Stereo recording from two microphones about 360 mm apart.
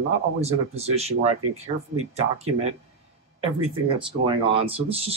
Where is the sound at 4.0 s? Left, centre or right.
Centre.